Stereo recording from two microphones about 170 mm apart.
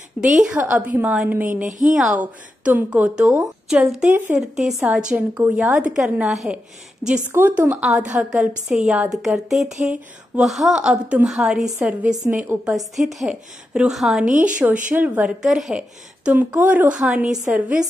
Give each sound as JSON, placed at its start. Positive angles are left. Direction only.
{"t": 0.4, "sound": "a woman's voice", "side_deg": -10}
{"t": 14.2, "sound": "speech", "side_deg": -50}
{"t": 14.9, "sound": "a woman's voice", "side_deg": -10}